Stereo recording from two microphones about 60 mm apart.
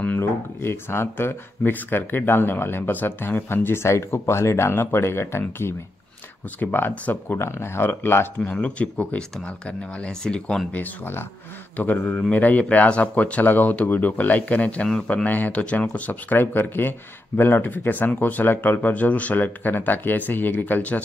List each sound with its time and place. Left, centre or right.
0.2 s speech: left
6.6 s speech: left
7.3 s speech: left
8.4 s speech: left
10.7 s speech: left